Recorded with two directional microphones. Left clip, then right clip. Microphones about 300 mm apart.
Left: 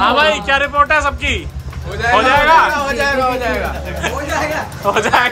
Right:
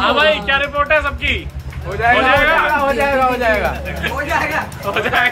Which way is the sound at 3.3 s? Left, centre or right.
Right.